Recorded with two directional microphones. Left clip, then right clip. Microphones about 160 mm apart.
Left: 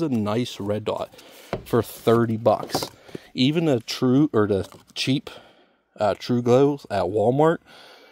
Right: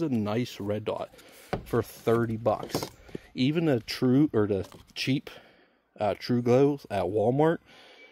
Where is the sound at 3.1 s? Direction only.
75° left (ahead or behind).